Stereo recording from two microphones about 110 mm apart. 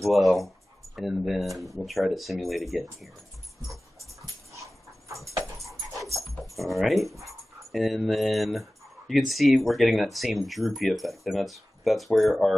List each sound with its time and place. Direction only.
0.0 s speech: centre (ahead or behind)
4.6 s dog: 30° right (ahead or behind)
6.5 s speech: centre (ahead or behind)